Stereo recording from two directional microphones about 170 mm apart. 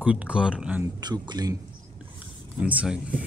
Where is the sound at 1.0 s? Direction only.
25° right (ahead or behind).